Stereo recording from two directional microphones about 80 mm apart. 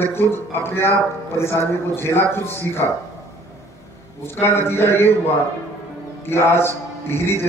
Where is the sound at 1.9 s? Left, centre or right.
Left.